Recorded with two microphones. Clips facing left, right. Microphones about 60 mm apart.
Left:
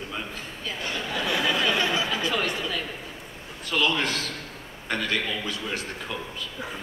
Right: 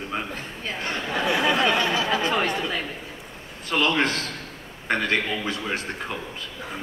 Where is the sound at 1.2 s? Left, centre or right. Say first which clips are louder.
Right 4 dB; right.